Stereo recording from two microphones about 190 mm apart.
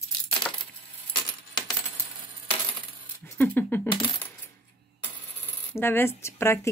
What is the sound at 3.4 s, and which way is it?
Speech, 10° left (ahead or behind).